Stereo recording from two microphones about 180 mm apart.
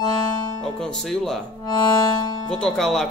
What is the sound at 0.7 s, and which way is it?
Speech, 5° left (ahead or behind).